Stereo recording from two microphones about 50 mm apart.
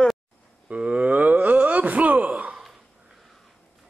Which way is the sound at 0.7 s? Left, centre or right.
Right.